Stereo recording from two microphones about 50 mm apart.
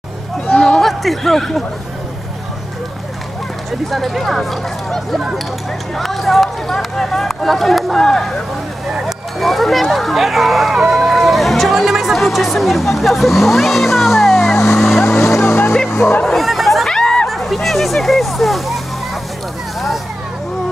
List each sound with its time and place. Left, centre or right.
0.6 s a sound: centre
0.8 s speech: centre
3.9 s speech: centre
14.8 s vehicle: centre
15.0 s vehicle: left
15.9 s a sound: left
16.3 s chatter: centre
16.9 s a sound: centre
17.3 s speech: centre